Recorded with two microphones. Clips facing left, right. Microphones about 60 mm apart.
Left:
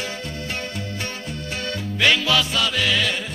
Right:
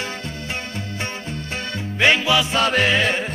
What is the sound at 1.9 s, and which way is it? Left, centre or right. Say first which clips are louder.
Music: right 2 dB; right.